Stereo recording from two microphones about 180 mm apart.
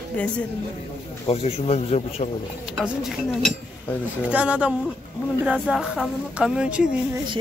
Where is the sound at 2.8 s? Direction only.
Centre (ahead or behind).